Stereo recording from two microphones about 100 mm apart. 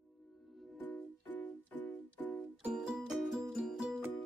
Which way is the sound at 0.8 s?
15° left (ahead or behind).